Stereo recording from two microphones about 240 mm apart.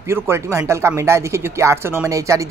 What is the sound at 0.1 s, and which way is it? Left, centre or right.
Speech, centre.